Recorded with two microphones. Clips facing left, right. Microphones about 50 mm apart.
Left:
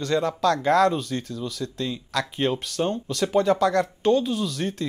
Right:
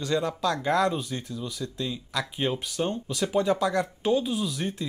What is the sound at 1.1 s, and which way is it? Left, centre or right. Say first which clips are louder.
Speech: left 5 dB; centre.